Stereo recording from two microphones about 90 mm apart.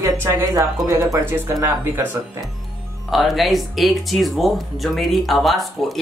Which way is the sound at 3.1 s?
Centre (ahead or behind).